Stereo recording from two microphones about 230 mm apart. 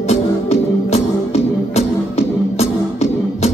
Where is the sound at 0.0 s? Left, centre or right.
Left.